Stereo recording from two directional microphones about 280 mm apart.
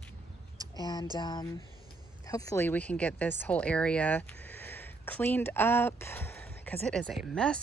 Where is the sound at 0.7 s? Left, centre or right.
Centre.